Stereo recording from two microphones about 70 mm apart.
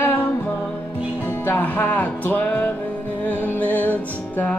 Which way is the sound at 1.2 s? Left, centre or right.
Left.